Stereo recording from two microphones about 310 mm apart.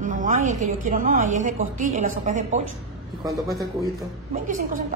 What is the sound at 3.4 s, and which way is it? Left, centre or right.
Speech, centre.